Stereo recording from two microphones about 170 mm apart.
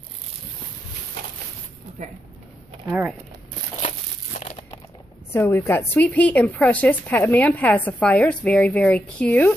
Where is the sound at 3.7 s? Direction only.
45° left (ahead or behind).